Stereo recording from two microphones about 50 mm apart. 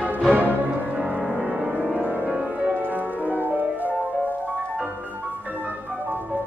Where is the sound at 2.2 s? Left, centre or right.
Right.